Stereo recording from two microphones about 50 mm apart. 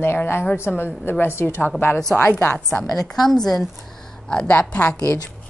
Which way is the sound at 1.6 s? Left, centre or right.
Left.